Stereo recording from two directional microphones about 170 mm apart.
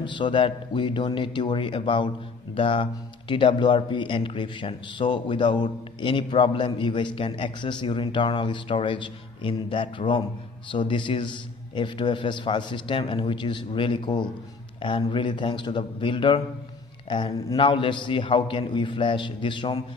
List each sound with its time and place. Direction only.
0.0 s speech: 30° left (ahead or behind)